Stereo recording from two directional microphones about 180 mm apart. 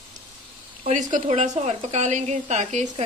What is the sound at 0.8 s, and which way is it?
A woman's voice, 40° right (ahead or behind).